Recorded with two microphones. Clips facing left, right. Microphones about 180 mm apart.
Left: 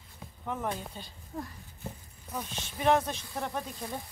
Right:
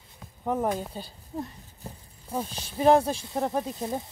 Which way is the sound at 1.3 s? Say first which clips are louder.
Right 5 dB; 25° right (ahead or behind).